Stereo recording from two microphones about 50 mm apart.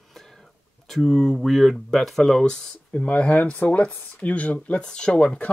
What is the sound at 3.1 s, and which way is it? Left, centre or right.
Speech, left.